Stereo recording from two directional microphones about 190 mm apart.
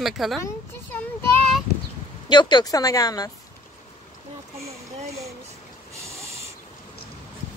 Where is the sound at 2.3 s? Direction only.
25° left (ahead or behind).